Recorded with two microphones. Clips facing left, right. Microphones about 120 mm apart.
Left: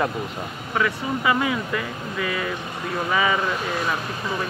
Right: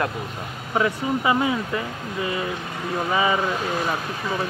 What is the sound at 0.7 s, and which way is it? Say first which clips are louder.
Speech: right 2 dB; 25° right (ahead or behind).